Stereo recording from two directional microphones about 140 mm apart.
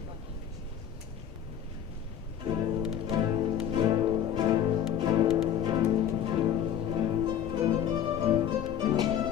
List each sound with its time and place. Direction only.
2.4 s music: 30° right (ahead or behind)